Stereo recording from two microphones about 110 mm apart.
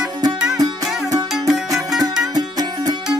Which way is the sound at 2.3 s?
35° right (ahead or behind).